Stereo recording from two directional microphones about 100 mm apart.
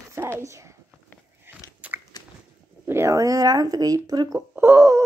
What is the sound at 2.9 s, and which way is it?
Speech, 30° right (ahead or behind).